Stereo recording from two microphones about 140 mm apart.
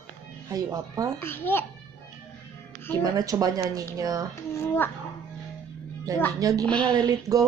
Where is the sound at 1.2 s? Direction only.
15° left (ahead or behind).